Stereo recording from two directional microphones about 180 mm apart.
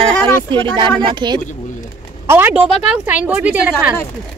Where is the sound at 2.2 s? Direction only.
10° right (ahead or behind).